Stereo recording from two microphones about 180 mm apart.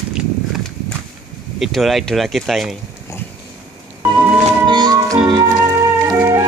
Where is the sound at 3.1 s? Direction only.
15° left (ahead or behind).